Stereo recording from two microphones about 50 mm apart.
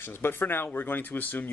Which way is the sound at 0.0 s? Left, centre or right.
Left.